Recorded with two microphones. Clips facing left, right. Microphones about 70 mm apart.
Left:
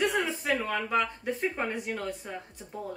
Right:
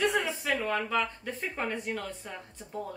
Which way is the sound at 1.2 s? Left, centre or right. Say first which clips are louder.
Left 4 dB; centre.